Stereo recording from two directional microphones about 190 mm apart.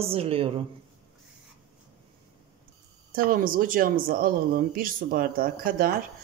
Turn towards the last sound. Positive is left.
turn(degrees=-50)  # may be behind; listen again after turning